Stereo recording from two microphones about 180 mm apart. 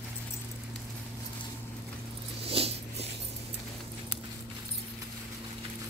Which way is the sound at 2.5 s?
30° right (ahead or behind).